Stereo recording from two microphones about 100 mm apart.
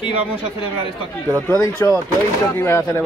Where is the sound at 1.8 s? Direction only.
30° left (ahead or behind).